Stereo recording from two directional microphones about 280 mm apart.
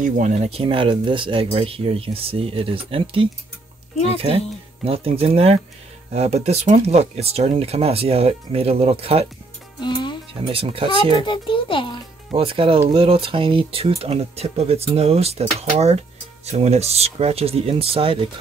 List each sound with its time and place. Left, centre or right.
0.0 s speech: right
4.8 s speech: centre
9.8 s music: centre
10.4 s speech: centre
11.1 s a child's voice: centre
12.3 s speech: centre
16.4 s speech: right